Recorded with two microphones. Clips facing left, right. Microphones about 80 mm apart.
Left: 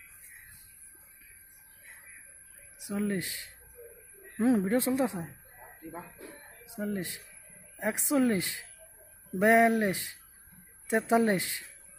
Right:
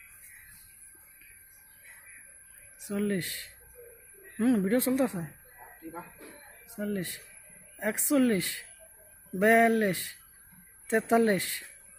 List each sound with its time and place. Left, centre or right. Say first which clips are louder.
2.9 s speech: right 1 dB; centre
6.6 s speech: right 1 dB; centre